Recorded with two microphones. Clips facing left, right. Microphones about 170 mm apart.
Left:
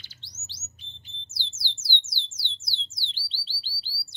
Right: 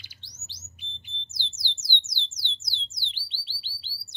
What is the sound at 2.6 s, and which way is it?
Music, 15° right (ahead or behind).